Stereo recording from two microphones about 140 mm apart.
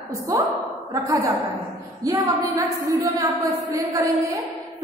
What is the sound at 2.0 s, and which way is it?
A woman's voice, 25° right (ahead or behind).